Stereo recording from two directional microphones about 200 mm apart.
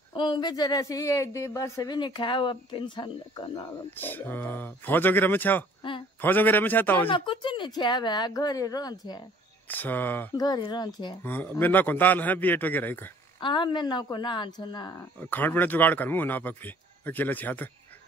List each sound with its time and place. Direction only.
0.1 s speech: 25° left (ahead or behind)
3.9 s speech: 10° left (ahead or behind)
5.8 s a sound: 25° left (ahead or behind)
6.2 s speech: 10° left (ahead or behind)
7.1 s speech: 25° left (ahead or behind)
9.7 s speech: 10° left (ahead or behind)
10.4 s speech: 20° left (ahead or behind)
11.2 s speech: 10° left (ahead or behind)
13.4 s speech: 25° left (ahead or behind)
15.1 s speech: 10° left (ahead or behind)